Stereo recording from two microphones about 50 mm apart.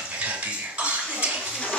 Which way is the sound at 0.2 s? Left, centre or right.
Right.